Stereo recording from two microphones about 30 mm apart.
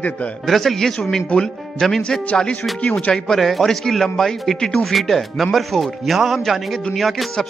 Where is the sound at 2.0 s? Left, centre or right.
Left.